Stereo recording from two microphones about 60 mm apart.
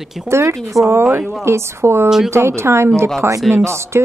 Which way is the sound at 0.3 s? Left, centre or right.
Right.